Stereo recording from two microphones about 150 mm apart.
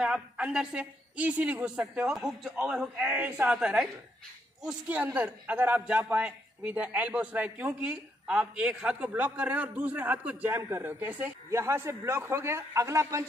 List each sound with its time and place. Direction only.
0.0 s a man's voice: 5° right (ahead or behind)